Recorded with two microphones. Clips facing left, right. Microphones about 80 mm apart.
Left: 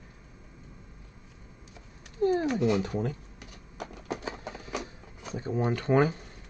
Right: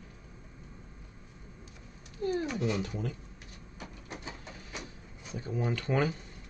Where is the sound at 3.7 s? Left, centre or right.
Left.